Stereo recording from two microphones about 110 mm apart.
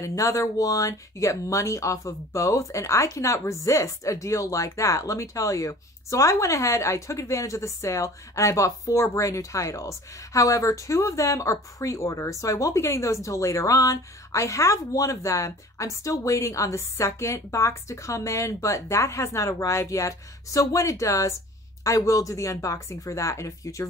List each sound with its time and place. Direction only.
0.0 s speech: 30° left (ahead or behind)